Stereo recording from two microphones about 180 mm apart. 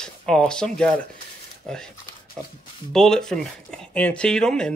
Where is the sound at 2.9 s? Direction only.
5° left (ahead or behind).